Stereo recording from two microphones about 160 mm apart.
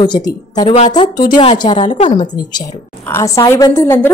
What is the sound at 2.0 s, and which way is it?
Speech, 40° left (ahead or behind).